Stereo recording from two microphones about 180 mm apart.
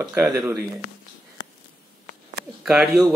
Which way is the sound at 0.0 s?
15° right (ahead or behind).